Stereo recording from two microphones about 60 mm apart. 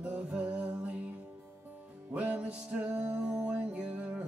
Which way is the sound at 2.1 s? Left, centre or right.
Right.